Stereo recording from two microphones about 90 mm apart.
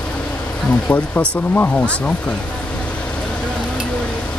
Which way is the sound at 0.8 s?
20° left (ahead or behind).